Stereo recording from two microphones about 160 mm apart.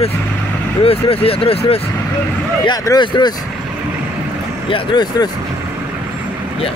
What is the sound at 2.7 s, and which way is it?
Speech, 25° left (ahead or behind).